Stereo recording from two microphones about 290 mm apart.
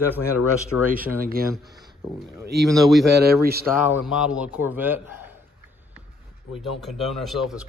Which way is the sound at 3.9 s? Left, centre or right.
Centre.